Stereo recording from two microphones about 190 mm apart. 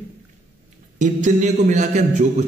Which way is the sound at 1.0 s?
40° right (ahead or behind).